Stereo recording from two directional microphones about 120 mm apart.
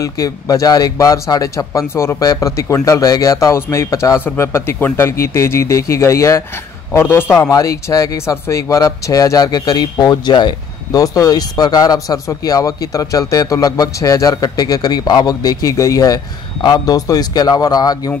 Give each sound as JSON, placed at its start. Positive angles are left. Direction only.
{"t": 0.0, "sound": "a man's voice", "side_deg": 30}